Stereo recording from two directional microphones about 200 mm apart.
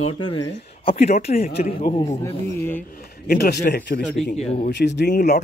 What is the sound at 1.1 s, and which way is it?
Speech, 45° left (ahead or behind).